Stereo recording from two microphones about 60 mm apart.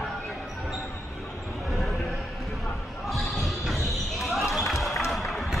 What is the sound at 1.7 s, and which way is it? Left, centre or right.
Basketball bounce, centre.